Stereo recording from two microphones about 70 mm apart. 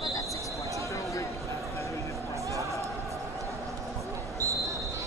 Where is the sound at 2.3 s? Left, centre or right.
Right.